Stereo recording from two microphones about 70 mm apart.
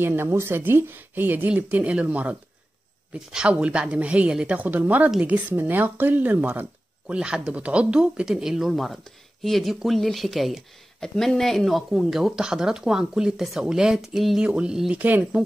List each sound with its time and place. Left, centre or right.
0.0 s a woman's voice: right
7.2 s speech: centre
14.4 s speech: centre
15.0 s speech: right